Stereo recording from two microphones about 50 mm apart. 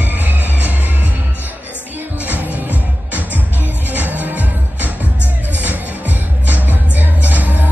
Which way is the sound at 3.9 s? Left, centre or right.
Right.